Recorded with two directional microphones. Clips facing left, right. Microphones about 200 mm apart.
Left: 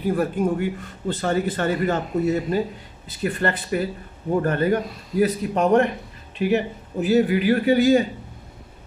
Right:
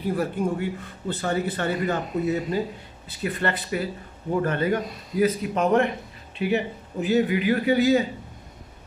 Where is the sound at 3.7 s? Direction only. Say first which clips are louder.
Left 3 dB; 45° left (ahead or behind).